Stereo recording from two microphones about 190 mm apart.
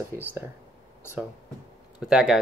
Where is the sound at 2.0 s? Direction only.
Centre (ahead or behind).